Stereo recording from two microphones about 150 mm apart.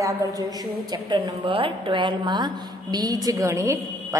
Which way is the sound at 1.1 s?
30° right (ahead or behind).